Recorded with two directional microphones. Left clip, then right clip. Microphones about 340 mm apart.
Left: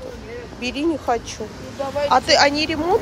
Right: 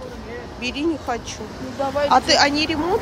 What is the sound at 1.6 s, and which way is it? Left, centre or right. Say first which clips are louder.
Speech: right 2 dB; right.